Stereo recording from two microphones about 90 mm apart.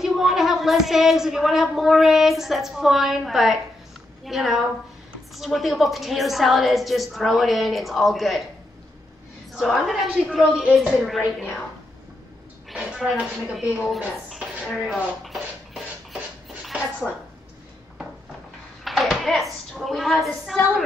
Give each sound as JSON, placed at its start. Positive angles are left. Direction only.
{"t": 0.0, "sound": "a woman's voice", "side_deg": -5}
{"t": 9.5, "sound": "a woman's voice", "side_deg": 0}
{"t": 12.7, "sound": "a woman's voice", "side_deg": -10}
{"t": 13.8, "sound": "a sound", "side_deg": 0}
{"t": 18.9, "sound": "a woman's voice", "side_deg": 0}